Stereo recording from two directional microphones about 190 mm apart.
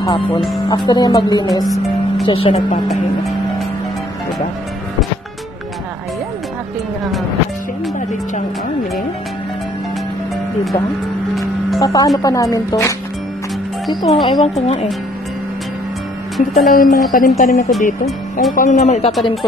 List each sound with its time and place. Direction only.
0.0 s speech: 25° left (ahead or behind)
11.8 s a woman's voice: 20° left (ahead or behind)
14.0 s speech: 30° left (ahead or behind)
16.3 s speech: centre (ahead or behind)
16.7 s speech: 45° left (ahead or behind)